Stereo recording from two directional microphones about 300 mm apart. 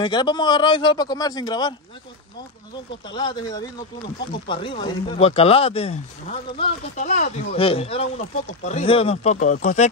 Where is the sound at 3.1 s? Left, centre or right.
Centre.